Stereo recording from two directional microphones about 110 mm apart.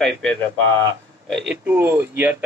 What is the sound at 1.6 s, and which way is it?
Speech, 20° right (ahead or behind).